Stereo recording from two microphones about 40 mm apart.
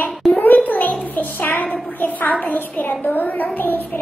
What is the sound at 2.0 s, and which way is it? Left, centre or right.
A woman's voice, left.